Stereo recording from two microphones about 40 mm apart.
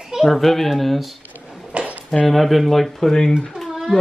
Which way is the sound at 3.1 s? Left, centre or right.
Centre.